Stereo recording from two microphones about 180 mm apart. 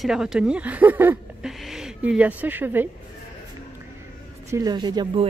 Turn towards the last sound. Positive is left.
turn(degrees=-25)  # may be behind; listen again after turning